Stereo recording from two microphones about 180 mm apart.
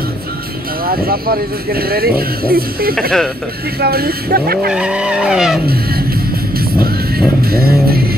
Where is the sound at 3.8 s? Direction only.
60° right (ahead or behind).